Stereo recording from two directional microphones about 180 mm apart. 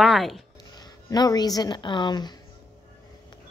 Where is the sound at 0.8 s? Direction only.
20° left (ahead or behind).